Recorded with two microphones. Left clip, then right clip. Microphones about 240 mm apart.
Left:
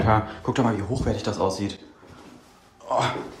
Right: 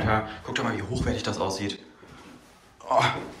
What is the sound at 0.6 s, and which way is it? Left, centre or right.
Speech, left.